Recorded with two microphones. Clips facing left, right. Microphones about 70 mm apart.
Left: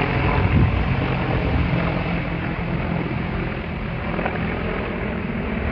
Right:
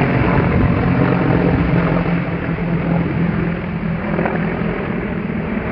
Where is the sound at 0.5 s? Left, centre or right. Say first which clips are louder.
Right 6 dB; right.